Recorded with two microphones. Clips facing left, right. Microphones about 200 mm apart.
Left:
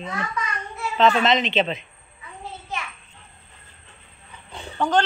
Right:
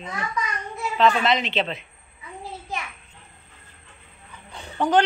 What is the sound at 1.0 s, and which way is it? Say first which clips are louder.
Speech: left 1 dB; 25° left (ahead or behind).